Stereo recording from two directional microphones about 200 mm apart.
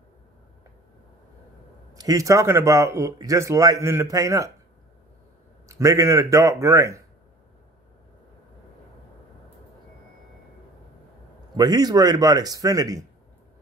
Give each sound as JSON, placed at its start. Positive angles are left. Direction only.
{"t": 2.0, "sound": "speech", "side_deg": -15}
{"t": 5.7, "sound": "speech", "side_deg": -15}
{"t": 11.5, "sound": "speech", "side_deg": -20}